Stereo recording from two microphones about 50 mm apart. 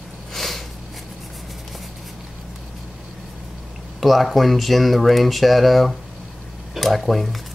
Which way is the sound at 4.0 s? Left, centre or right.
Centre.